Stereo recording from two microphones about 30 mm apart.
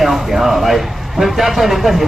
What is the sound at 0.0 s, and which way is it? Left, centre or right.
Speech, centre.